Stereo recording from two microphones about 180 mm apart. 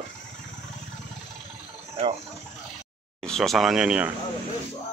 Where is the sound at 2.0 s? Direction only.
35° right (ahead or behind).